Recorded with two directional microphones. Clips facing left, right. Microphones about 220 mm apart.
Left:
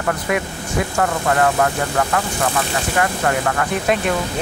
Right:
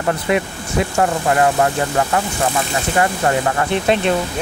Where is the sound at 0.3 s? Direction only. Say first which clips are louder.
Right 3 dB; 25° right (ahead or behind).